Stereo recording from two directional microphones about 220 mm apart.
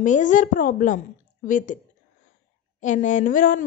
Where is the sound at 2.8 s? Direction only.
35° left (ahead or behind).